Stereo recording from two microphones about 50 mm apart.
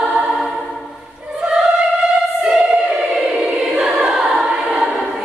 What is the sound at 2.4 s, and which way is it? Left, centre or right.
Choir, centre.